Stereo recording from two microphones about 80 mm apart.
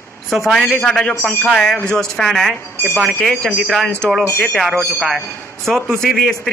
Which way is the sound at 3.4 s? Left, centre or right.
Centre.